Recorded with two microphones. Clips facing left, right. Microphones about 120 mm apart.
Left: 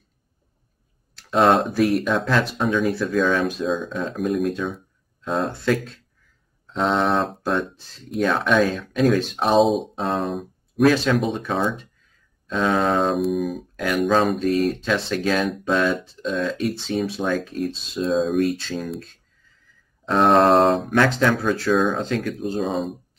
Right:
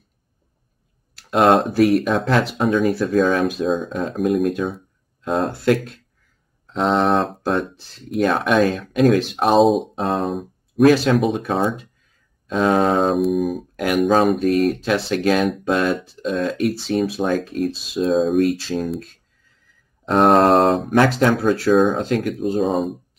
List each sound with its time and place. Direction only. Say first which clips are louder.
1.3 s speech: right 2 dB; centre (ahead or behind)
12.4 s speech: right 3 dB; 25° right (ahead or behind)
13.0 s speech: right 3 dB; centre (ahead or behind)
13.8 s speech: right 3 dB; 20° right (ahead or behind)
14.2 s speech: right 3 dB; centre (ahead or behind)
20.2 s speech: right 2 dB; centre (ahead or behind)
21.0 s speech: right 4 dB; 15° right (ahead or behind)